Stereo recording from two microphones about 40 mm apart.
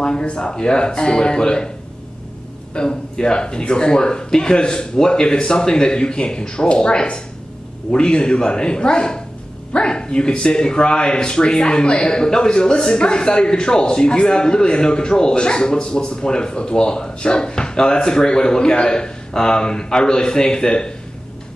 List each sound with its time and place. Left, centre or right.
0.0 s speech: left
2.7 s speech: left